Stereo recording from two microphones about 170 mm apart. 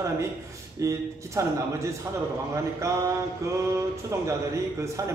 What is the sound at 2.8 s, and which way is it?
Speech, 20° right (ahead or behind).